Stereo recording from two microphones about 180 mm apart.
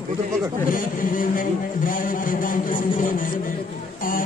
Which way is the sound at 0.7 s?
50° left (ahead or behind).